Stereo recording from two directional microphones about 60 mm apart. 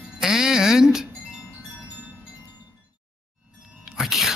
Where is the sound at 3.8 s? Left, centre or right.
Centre.